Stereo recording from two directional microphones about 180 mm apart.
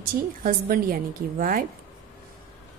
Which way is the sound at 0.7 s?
50° right (ahead or behind).